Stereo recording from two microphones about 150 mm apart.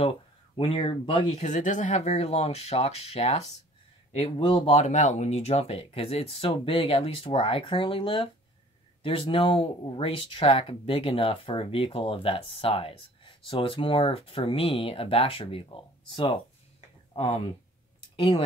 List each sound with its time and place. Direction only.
0.0 s speech: 40° left (ahead or behind)
1.4 s speech: 55° left (ahead or behind); by 18.4 s 30° left (ahead or behind)